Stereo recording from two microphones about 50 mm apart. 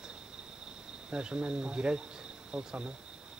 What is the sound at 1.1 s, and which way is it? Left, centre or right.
Speech, centre.